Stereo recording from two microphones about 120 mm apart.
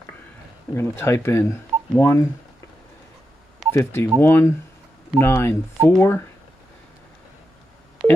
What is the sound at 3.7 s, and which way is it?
Speech, 25° left (ahead or behind).